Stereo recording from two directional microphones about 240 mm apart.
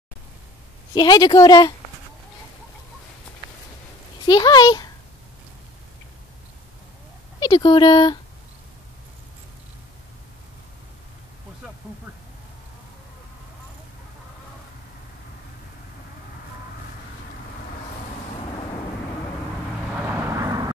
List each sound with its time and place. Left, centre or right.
0.9 s speech: centre
4.3 s speech: centre
7.3 s speech: centre
18.4 s vehicle: left
20.1 s vehicle: centre